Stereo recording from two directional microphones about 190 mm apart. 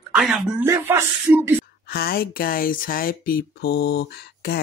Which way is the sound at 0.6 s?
15° right (ahead or behind).